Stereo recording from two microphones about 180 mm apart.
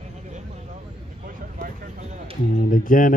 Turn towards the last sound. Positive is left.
turn(degrees=50)  # may be behind; listen again after turning